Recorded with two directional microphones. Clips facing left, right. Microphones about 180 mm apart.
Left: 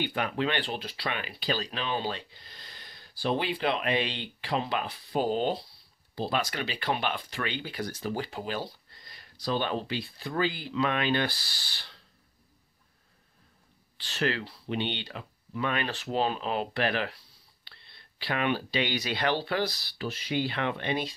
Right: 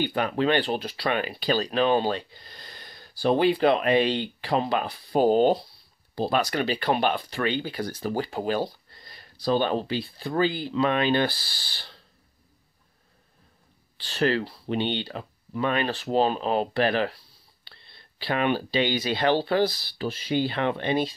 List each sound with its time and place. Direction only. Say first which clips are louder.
0.0 s speech: right 5 dB; 35° right (ahead or behind)
13.9 s speech: right 6 dB; 35° right (ahead or behind)